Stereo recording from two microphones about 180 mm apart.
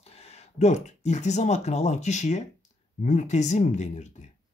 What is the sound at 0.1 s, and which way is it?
Speech, 35° left (ahead or behind).